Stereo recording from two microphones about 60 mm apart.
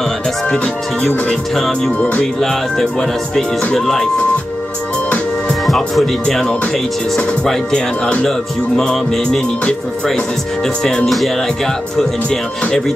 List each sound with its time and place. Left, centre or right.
1.0 s speech: centre
2.0 s music: left
2.4 s speech: centre
5.7 s speech: centre
7.4 s music: centre
10.8 s speech: centre